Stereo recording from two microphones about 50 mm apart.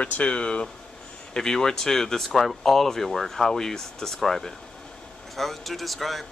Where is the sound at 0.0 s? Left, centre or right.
Left.